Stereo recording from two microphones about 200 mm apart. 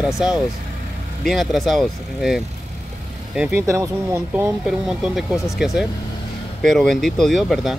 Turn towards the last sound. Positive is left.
turn(degrees=0)  # may be behind; listen again after turning